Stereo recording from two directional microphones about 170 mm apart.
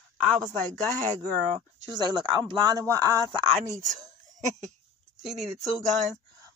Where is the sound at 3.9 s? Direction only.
45° right (ahead or behind).